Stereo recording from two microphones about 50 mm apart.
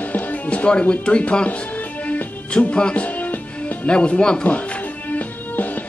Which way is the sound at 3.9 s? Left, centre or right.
Left.